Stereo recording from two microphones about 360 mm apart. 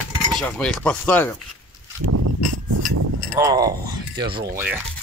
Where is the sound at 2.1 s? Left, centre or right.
Right.